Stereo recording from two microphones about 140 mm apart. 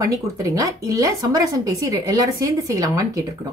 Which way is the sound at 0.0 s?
25° right (ahead or behind).